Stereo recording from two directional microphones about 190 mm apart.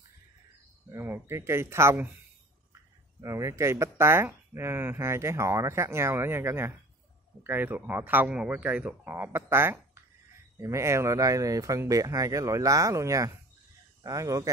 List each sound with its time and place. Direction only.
0.9 s speech: 10° right (ahead or behind)
3.2 s speech: 15° right (ahead or behind)